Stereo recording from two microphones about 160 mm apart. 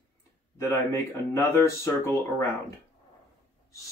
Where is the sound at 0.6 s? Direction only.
15° left (ahead or behind).